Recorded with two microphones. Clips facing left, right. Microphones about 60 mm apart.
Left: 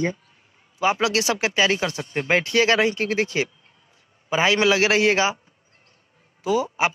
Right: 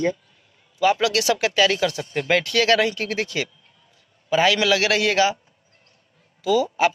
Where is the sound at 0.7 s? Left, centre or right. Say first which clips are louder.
Right 2 dB; left.